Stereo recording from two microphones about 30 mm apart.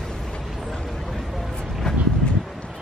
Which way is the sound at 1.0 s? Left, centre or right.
Centre.